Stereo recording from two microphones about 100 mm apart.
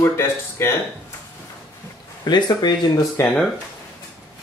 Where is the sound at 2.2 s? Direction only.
45° left (ahead or behind).